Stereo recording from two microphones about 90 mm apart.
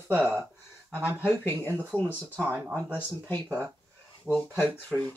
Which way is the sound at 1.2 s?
25° left (ahead or behind).